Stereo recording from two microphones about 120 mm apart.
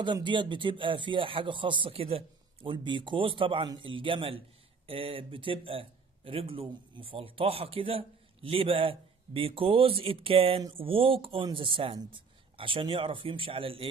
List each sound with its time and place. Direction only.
0.0 s speech: 40° right (ahead or behind)